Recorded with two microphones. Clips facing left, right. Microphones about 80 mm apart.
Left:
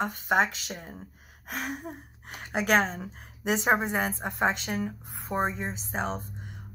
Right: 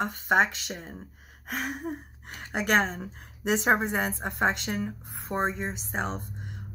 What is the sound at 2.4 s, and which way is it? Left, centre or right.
A woman's voice, centre.